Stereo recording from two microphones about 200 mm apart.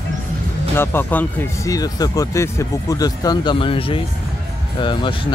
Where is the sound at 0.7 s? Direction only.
10° left (ahead or behind).